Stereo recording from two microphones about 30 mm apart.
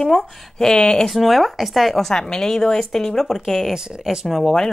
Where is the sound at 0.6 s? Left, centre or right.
Left.